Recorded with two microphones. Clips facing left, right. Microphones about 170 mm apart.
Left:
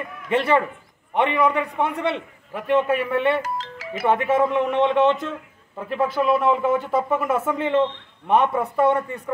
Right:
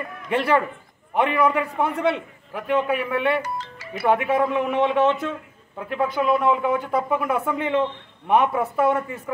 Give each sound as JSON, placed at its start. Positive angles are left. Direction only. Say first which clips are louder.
{"t": 0.3, "sound": "speech", "louder": "left 1 dB", "side_deg": 0}
{"t": 3.4, "sound": "music", "louder": "left 2 dB", "side_deg": 90}
{"t": 4.0, "sound": "speech", "louder": "left 1 dB", "side_deg": 0}